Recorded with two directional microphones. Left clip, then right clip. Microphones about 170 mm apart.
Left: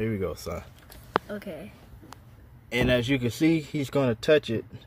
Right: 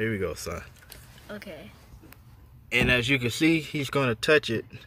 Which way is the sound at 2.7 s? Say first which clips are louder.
Right 2 dB; 10° left (ahead or behind).